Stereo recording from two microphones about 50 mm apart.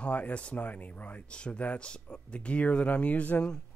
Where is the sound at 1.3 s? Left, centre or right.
Left.